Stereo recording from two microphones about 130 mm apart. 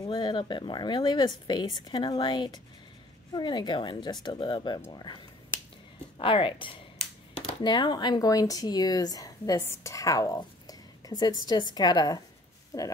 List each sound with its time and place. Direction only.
0.0 s a woman's voice: 35° left (ahead or behind)